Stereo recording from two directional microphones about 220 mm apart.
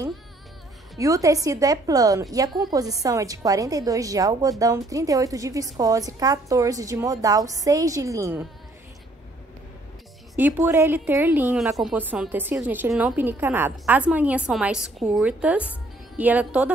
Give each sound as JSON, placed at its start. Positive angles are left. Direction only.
{"t": 0.9, "sound": "a woman's voice", "side_deg": -15}
{"t": 10.3, "sound": "a woman's voice", "side_deg": -10}